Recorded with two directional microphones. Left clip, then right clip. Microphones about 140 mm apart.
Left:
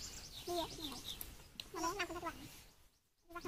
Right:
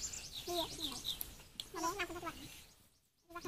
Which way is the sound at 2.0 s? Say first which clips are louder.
Even; 20° left (ahead or behind).